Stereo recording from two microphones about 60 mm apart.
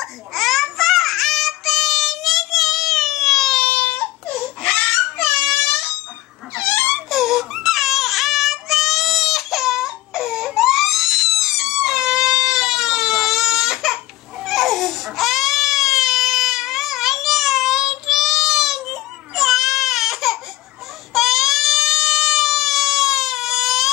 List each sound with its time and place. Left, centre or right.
0.0 s child singing: centre
4.7 s dog: left
7.1 s baby cry: centre